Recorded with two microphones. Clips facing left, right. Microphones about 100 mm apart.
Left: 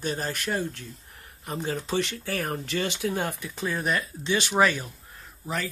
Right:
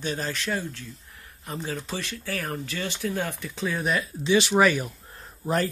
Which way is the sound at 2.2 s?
55° left (ahead or behind).